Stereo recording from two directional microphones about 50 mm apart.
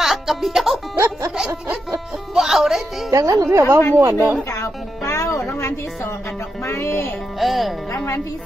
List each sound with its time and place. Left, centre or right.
0.0 s music: centre
0.9 s music: right
2.3 s music: centre
3.1 s a woman's voice: right
5.1 s music: left
6.6 s music: left
7.3 s speech: centre